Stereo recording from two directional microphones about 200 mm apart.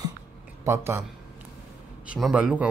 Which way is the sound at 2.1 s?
5° right (ahead or behind).